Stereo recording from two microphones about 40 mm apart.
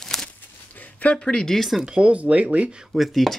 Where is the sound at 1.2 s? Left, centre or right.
Centre.